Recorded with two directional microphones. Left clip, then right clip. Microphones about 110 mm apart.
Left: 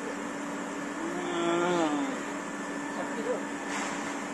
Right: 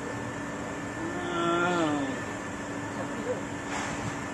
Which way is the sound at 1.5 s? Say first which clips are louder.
Right 1 dB; 20° right (ahead or behind).